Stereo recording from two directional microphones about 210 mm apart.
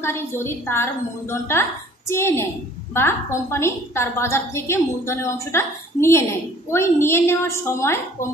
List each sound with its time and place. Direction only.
0.0 s a woman's voice: 10° left (ahead or behind)